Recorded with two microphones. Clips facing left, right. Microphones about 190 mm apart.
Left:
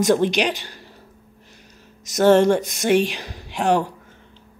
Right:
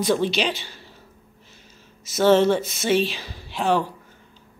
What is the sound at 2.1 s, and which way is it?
Speech, 15° left (ahead or behind).